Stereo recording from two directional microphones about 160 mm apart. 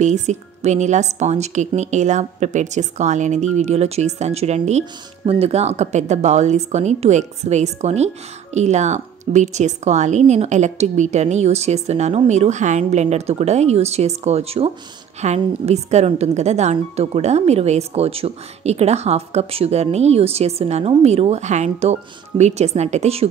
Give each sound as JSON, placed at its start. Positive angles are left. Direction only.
{"t": 0.0, "sound": "speech", "side_deg": -45}